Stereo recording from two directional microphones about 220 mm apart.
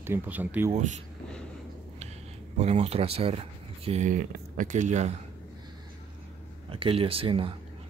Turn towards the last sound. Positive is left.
turn(degrees=-25)  # may be behind; listen again after turning